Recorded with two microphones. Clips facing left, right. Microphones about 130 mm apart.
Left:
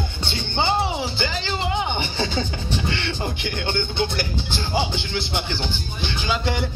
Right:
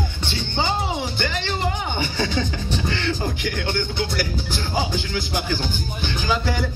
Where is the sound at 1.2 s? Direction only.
30° left (ahead or behind).